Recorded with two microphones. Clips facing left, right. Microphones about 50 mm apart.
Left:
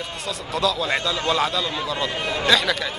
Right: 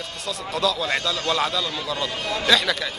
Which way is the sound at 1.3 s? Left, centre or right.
Centre.